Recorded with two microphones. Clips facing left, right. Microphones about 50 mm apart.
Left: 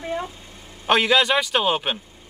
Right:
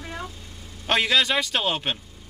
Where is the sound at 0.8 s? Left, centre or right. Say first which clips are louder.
Left 4 dB; centre.